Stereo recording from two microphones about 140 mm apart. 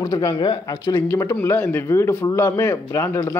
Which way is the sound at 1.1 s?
15° left (ahead or behind).